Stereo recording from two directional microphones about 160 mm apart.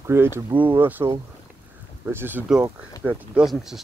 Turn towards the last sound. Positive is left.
turn(degrees=0)  # may be behind; listen again after turning